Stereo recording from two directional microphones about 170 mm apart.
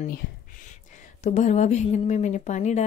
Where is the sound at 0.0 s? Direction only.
55° left (ahead or behind).